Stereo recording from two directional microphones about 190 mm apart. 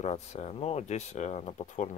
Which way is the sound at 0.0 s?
35° left (ahead or behind).